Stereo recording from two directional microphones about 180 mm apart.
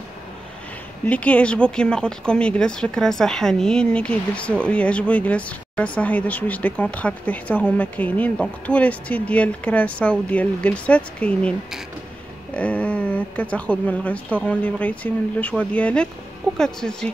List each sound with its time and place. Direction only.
1.0 s speech: 10° left (ahead or behind)